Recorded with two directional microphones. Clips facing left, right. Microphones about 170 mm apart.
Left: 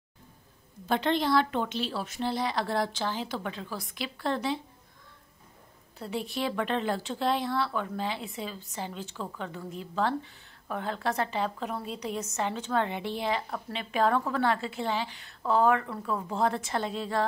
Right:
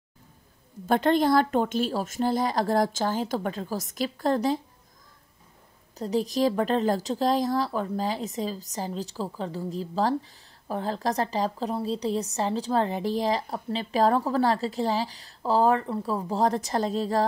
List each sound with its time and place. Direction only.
0.8 s speech: 45° right (ahead or behind)
5.9 s speech: 40° right (ahead or behind)